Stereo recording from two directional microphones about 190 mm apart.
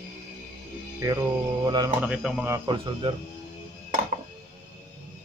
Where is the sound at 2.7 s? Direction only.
25° right (ahead or behind).